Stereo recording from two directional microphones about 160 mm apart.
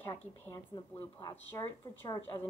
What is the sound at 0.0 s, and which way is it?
Speech, 15° left (ahead or behind).